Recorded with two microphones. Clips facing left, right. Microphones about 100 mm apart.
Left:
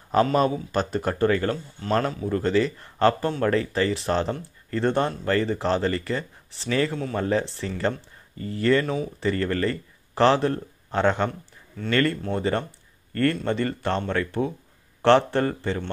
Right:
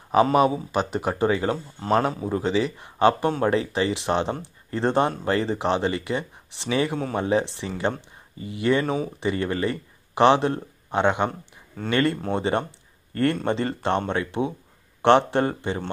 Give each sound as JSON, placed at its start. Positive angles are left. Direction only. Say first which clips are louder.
{"t": 0.1, "sound": "speech", "louder": "right 2 dB", "side_deg": -10}
{"t": 8.8, "sound": "speech", "louder": "right 1 dB", "side_deg": -30}
{"t": 9.3, "sound": "a man's voice", "louder": "left 1 dB", "side_deg": -15}